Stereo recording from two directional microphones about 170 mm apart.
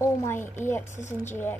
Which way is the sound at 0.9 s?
45° left (ahead or behind).